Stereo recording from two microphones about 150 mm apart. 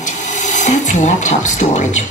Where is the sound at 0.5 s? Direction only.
55° left (ahead or behind).